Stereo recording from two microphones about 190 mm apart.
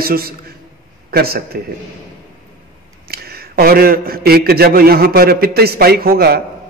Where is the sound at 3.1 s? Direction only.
55° right (ahead or behind).